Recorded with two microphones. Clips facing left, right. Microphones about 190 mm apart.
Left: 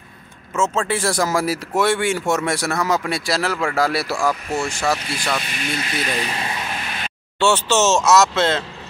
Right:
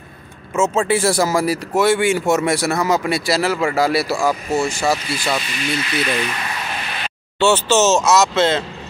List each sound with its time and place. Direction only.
0.6 s speech: 5° right (ahead or behind)
5.4 s speech: 50° left (ahead or behind); by 6.5 s 30° left (ahead or behind)
7.3 s speech: centre (ahead or behind)